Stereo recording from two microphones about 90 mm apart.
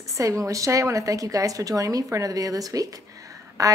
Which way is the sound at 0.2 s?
35° right (ahead or behind).